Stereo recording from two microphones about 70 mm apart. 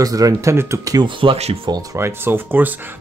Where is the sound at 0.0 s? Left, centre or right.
Right.